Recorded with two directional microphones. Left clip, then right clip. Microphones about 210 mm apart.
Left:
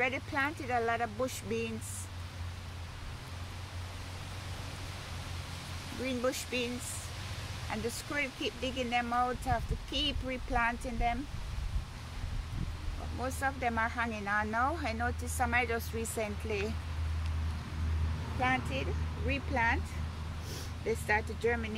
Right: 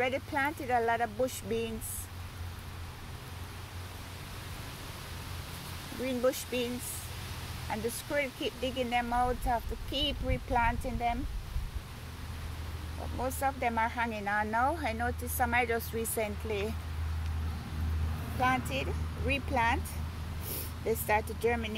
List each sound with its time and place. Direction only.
0.0 s speech: 15° right (ahead or behind)
6.0 s speech: 10° right (ahead or behind)
7.7 s speech: 10° right (ahead or behind)
13.2 s speech: 10° right (ahead or behind)
18.4 s speech: 20° right (ahead or behind)
20.8 s speech: 25° right (ahead or behind)